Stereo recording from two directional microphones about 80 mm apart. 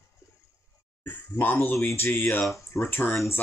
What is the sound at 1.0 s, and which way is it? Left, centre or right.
Speech, left.